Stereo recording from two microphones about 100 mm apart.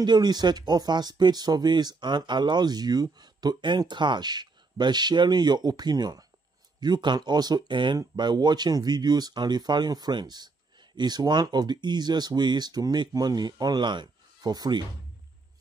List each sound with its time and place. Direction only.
0.0 s speech: 45° right (ahead or behind)